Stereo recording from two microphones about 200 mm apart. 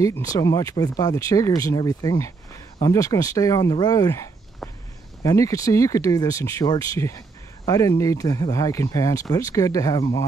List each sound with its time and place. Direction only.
0.0 s speech: 15° left (ahead or behind)